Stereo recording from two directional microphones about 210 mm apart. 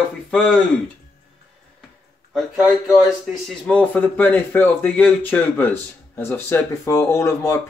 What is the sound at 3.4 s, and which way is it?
Speech, 5° left (ahead or behind).